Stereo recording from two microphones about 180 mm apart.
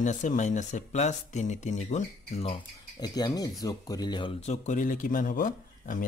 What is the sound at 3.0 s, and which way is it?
Speech, 20° left (ahead or behind).